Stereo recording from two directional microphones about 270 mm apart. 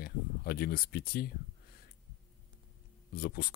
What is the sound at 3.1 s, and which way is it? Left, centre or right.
Speech, left.